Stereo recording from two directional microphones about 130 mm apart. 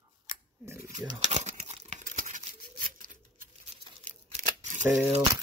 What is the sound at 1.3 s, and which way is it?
Crumpling, 65° right (ahead or behind).